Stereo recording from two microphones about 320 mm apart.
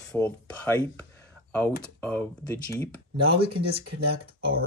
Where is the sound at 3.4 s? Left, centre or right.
Right.